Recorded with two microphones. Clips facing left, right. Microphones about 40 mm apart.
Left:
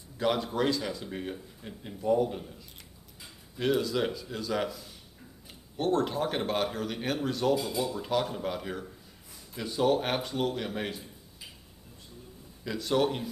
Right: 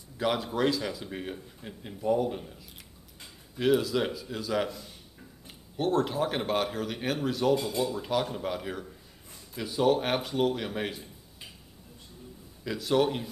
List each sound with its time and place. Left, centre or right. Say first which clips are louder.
0.2 s a man's voice: even; centre
5.8 s a man's voice: right 1 dB; centre
12.6 s a man's voice: right 1 dB; centre